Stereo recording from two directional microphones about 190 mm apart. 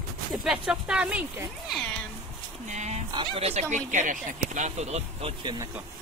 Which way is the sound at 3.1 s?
30° right (ahead or behind).